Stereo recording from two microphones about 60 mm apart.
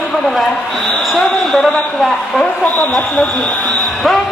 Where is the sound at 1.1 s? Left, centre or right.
Centre.